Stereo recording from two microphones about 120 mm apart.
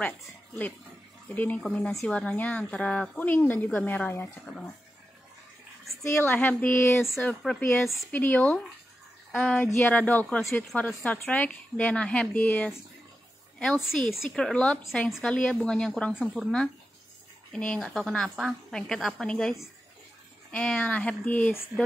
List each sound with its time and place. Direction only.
1.3 s a woman's voice: 15° left (ahead or behind)
6.0 s a woman's voice: 20° left (ahead or behind)
14.3 s a woman's voice: 5° left (ahead or behind)